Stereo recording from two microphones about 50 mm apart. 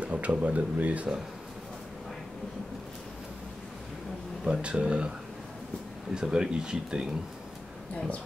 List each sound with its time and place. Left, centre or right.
0.0 s speech: right
4.5 s speech: right
6.1 s speech: centre